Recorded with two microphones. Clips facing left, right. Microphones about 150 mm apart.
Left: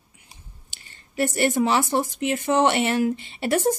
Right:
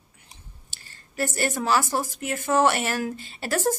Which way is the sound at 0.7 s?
20° left (ahead or behind).